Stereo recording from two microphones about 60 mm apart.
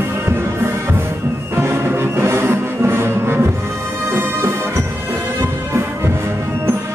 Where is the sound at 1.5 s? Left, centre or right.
Right.